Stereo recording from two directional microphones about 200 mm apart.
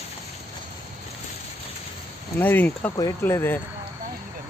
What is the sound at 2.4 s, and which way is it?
Speech, 10° left (ahead or behind).